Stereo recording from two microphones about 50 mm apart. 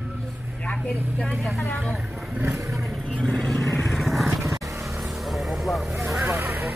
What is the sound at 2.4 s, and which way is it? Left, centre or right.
Vehicle, right.